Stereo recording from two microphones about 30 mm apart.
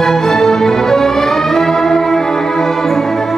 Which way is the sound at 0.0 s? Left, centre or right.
Centre.